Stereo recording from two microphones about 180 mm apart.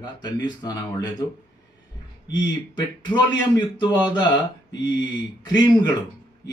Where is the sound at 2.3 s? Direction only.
25° left (ahead or behind).